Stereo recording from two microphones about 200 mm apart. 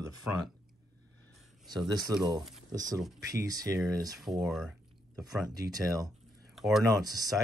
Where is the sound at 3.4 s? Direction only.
15° right (ahead or behind).